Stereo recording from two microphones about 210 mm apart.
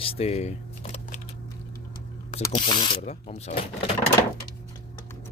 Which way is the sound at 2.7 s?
25° left (ahead or behind).